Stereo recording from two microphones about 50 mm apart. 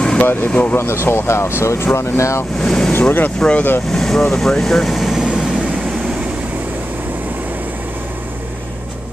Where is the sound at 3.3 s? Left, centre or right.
Centre.